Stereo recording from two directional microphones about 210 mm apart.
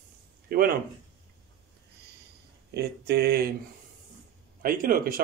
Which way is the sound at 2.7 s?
50° right (ahead or behind).